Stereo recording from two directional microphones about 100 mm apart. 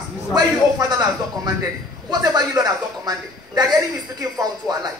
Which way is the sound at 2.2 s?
40° right (ahead or behind).